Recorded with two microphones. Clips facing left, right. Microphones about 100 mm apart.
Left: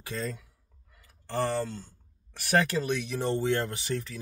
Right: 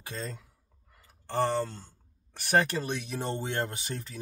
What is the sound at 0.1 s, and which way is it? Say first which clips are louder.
Speech: left 4 dB; 30° right (ahead or behind).